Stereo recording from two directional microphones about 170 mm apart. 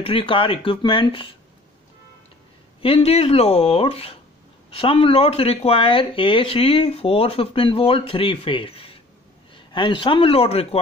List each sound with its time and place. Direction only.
0.0 s speech: 30° left (ahead or behind)
2.8 s a man's voice: 35° left (ahead or behind)